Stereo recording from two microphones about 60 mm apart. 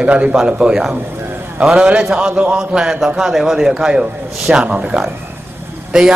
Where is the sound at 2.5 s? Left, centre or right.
Centre.